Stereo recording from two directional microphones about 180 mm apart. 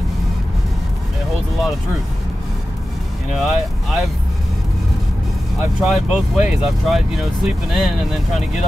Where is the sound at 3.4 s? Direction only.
Centre (ahead or behind).